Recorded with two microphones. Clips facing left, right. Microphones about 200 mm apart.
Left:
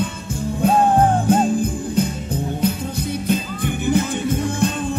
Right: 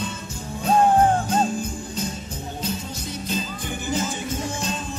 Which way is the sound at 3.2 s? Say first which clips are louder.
Left 6 dB; 60° left (ahead or behind).